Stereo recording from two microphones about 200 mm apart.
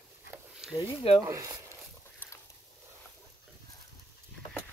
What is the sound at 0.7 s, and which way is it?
Speech, 25° left (ahead or behind).